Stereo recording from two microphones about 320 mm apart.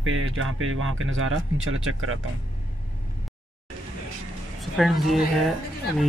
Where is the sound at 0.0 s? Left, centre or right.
Right.